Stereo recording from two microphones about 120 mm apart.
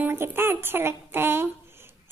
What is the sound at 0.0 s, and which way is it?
A woman's voice, 20° right (ahead or behind).